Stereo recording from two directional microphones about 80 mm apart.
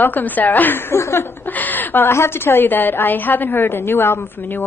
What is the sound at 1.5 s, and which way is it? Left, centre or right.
A woman's voice, left.